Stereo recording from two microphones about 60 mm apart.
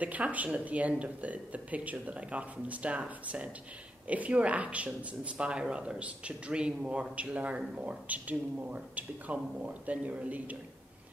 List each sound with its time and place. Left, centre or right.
0.0 s speech: right